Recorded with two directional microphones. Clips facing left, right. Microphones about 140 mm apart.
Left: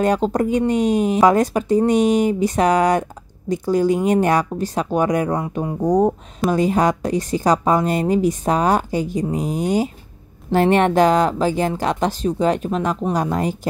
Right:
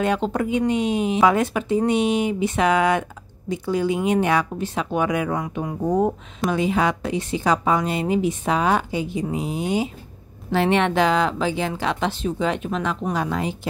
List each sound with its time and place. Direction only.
0.0 s speech: 40° left (ahead or behind)